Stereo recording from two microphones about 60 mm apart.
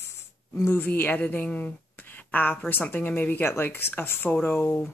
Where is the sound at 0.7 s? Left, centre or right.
Left.